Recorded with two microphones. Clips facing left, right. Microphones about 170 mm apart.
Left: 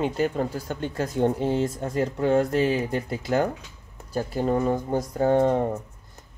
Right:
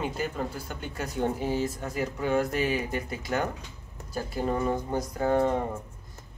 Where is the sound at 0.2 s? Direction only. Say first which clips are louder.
Left 7 dB; 30° left (ahead or behind).